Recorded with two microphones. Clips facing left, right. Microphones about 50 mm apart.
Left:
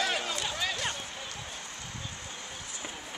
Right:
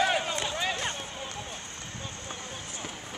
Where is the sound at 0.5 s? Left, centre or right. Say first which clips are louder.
Right 2 dB; right.